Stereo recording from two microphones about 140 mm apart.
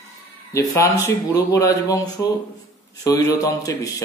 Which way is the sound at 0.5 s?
20° left (ahead or behind).